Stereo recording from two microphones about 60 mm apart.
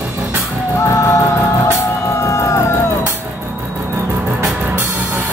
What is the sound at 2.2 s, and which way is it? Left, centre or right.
Music, left.